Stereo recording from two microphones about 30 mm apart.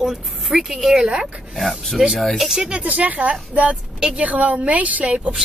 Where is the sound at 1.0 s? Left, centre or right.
Right.